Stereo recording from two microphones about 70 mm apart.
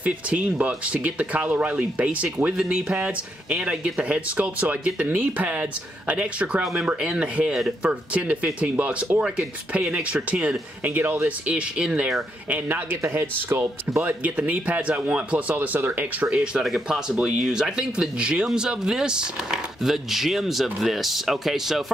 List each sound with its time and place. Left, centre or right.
0.0 s speech: right
2.5 s speech: centre
12.4 s speech: right
13.0 s speech: right; by 16.6 s centre
16.6 s speech: centre